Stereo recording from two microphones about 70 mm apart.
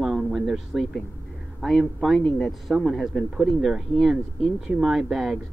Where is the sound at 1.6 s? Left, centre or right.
Centre.